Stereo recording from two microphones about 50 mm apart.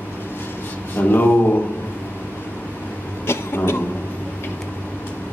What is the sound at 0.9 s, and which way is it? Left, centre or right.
Speech, left.